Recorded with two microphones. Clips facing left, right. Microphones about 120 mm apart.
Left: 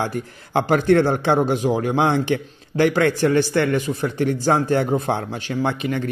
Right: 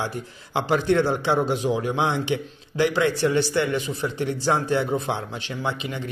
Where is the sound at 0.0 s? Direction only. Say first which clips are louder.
Left 5 dB; 50° left (ahead or behind).